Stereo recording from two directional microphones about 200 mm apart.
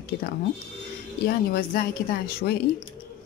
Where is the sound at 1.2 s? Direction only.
50° left (ahead or behind).